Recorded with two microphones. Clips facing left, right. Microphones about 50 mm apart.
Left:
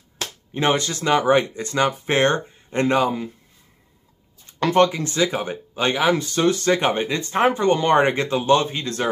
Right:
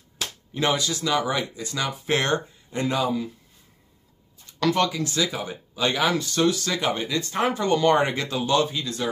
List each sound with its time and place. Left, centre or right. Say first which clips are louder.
0.6 s speech: left 3 dB; left
2.0 s speech: left 4 dB; left
4.5 s speech: left 5 dB; left
5.9 s speech: left 3 dB; left